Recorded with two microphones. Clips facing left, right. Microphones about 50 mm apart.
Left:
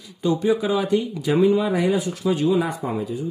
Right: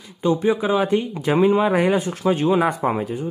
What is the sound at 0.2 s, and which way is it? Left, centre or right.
A woman's voice, right.